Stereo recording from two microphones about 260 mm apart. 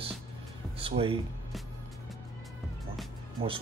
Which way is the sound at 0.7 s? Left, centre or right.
Right.